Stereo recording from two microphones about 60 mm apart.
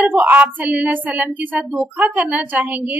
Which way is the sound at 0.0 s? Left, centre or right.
Right.